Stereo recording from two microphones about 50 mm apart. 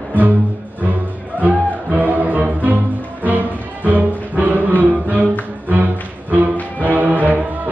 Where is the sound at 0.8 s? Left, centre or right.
Right.